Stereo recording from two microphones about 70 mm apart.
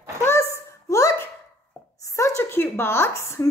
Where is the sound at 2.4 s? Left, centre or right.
Left.